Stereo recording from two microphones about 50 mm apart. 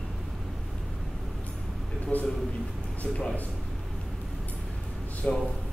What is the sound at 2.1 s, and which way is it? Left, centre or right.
Speech, left.